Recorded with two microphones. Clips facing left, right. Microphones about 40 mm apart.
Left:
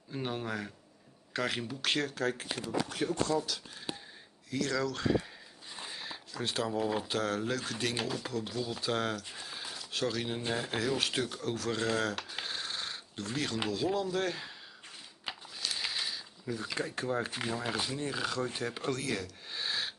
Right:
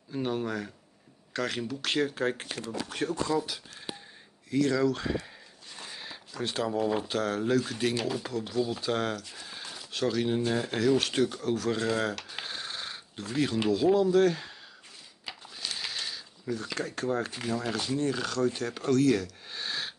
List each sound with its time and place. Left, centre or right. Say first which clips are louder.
0.1 s speech: right 5 dB; centre
2.1 s speech: right 3 dB; right
2.6 s speech: even; right
3.4 s speech: even; centre
9.5 s a sound: even; centre
10.5 s speech: right 5 dB; centre
12.3 s a sound: right 1 dB; centre
13.7 s speech: right 11 dB; centre
15.3 s ratchet: left 1 dB; left
15.6 s a sound: even; centre
17.3 s speech: right 3 dB; left
17.6 s speech: right 8 dB; centre